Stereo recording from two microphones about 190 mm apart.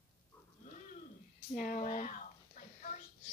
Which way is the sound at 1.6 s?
45° left (ahead or behind).